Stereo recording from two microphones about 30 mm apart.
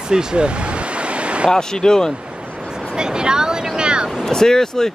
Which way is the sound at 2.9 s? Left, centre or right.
Right.